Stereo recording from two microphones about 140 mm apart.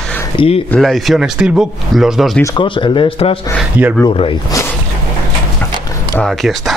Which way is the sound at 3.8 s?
15° right (ahead or behind).